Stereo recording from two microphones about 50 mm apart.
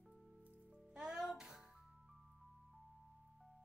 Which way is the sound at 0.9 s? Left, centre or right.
Centre.